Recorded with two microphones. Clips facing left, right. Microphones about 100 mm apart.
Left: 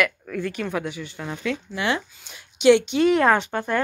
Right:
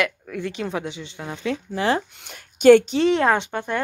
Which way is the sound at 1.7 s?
35° right (ahead or behind).